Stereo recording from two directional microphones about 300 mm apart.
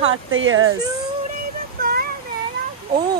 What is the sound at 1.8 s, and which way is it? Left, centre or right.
Child singing, right.